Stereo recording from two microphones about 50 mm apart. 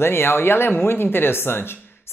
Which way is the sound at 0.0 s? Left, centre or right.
Left.